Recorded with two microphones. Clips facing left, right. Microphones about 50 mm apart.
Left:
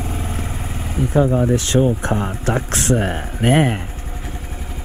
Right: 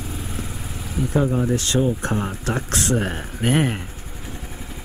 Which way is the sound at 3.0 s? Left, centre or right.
Left.